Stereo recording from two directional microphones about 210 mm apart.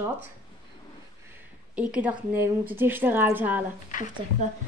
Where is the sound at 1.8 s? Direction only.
5° right (ahead or behind).